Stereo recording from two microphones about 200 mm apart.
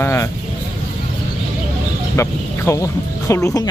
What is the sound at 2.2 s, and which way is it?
Speech, 15° left (ahead or behind).